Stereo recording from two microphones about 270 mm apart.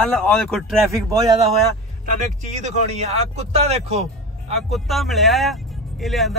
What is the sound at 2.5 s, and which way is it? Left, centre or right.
Speech, right.